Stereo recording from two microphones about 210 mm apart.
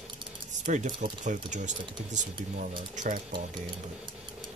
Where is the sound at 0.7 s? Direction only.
35° right (ahead or behind).